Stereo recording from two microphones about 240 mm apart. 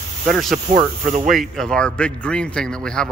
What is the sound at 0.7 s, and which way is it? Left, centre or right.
Speech, right.